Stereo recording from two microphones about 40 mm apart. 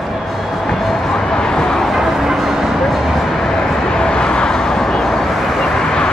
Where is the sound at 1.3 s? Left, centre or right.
Centre.